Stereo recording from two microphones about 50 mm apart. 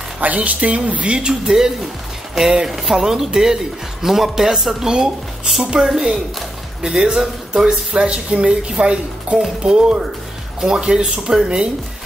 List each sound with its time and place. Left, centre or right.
0.2 s speech: right